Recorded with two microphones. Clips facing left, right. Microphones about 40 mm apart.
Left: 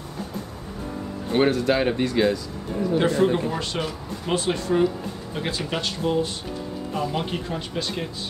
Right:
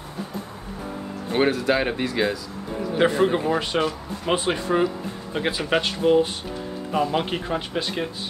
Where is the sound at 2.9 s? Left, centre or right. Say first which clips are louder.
Right 1 dB; right.